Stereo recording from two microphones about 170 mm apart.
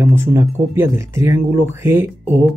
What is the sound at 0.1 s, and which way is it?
Speech, 15° right (ahead or behind).